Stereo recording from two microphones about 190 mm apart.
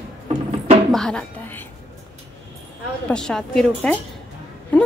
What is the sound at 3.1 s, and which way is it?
Speech, 5° left (ahead or behind).